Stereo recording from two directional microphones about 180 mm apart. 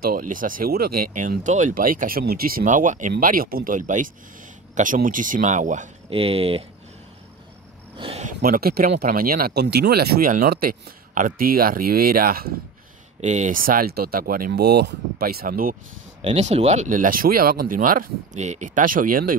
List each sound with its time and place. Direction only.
0.0 s speech: 50° right (ahead or behind)
6.0 s speech: 30° right (ahead or behind)
8.0 s a sound: 40° right (ahead or behind)
8.4 s speech: 55° right (ahead or behind)
13.2 s speech: 40° right (ahead or behind)
16.2 s speech: 35° right (ahead or behind)